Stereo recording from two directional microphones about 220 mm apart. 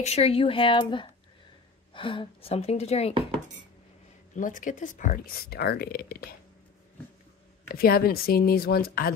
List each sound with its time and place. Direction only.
0.0 s a woman's voice: 30° left (ahead or behind)
4.4 s speech: 35° left (ahead or behind)
7.6 s speech: 40° left (ahead or behind)